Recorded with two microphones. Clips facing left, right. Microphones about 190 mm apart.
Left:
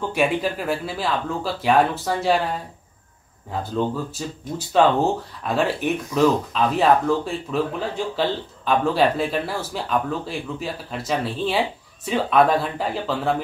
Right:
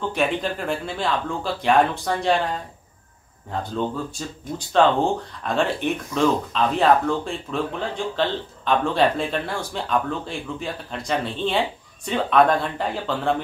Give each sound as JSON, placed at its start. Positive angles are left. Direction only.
{"t": 0.1, "sound": "speech", "side_deg": 10}